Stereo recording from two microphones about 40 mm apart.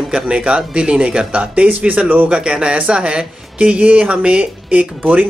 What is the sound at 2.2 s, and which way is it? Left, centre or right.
Speech, right.